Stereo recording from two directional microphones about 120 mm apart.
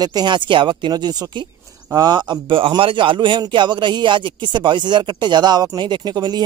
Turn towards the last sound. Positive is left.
turn(degrees=-35)  # may be behind; listen again after turning